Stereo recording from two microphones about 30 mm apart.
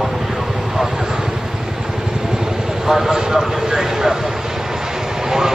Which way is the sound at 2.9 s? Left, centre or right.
Centre.